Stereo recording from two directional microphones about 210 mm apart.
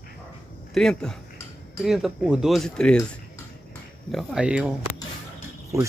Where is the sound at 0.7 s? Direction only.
Centre (ahead or behind).